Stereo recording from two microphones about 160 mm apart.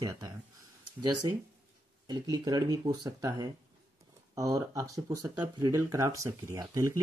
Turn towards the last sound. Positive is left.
turn(degrees=-25)  # may be behind; listen again after turning